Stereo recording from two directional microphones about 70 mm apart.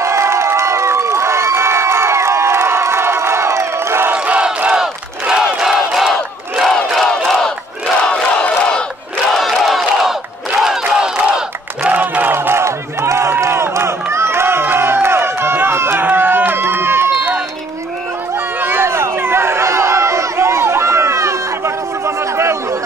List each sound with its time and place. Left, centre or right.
0.0 s crowd: right
4.1 s battle cry: right; by 7.5 s centre
8.0 s battle cry: centre
9.3 s battle cry: centre
11.9 s a sound: right
18.6 s run: right